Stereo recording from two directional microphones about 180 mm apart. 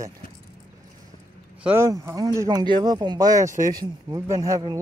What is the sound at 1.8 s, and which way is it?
Speech, 20° right (ahead or behind).